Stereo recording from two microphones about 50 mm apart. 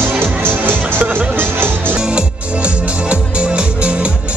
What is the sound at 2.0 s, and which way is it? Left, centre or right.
Music, right.